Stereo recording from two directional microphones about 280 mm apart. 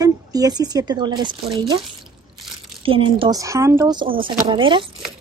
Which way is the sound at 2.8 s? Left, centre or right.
Centre.